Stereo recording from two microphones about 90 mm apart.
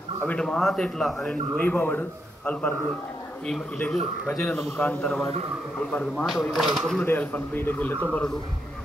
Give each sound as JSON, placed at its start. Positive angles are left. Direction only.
{"t": 0.2, "sound": "a man's voice", "side_deg": 10}
{"t": 3.9, "sound": "a man's voice", "side_deg": 5}
{"t": 6.5, "sound": "speech", "side_deg": 0}
{"t": 7.1, "sound": "a man's voice", "side_deg": 20}